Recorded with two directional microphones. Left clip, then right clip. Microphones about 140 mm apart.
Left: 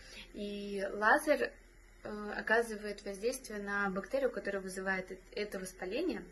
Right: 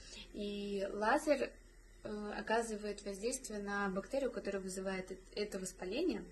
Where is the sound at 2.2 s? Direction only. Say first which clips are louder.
Left 5 dB; 20° right (ahead or behind).